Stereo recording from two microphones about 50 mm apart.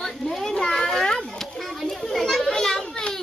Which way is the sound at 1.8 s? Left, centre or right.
Centre.